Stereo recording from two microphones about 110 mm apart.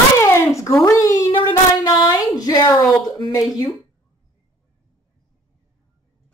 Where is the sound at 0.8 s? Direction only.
30° left (ahead or behind).